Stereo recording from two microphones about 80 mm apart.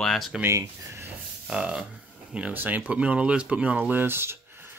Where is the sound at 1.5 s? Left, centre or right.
Centre.